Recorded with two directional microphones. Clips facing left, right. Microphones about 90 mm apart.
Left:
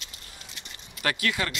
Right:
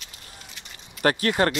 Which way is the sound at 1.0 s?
40° right (ahead or behind).